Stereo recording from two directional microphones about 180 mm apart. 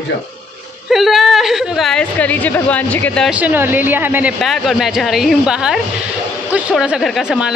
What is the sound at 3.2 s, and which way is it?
A woman's voice, 10° right (ahead or behind).